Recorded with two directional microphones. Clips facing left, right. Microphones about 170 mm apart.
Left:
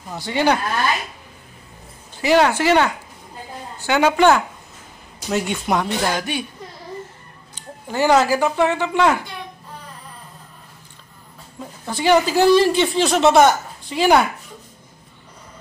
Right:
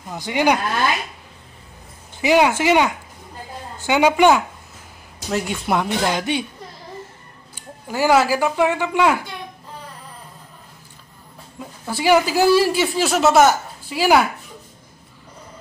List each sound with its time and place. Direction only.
0.1 s speech: 15° right (ahead or behind)
2.1 s speech: 15° right (ahead or behind)
5.3 s speech: centre (ahead or behind)
6.0 s speech: 20° right (ahead or behind)
7.5 s speech: 10° right (ahead or behind)
11.8 s speech: 10° right (ahead or behind)